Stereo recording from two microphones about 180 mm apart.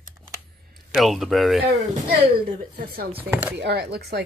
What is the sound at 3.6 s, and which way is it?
Speech, 65° right (ahead or behind).